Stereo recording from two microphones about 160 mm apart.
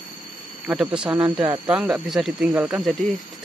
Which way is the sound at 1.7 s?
5° right (ahead or behind).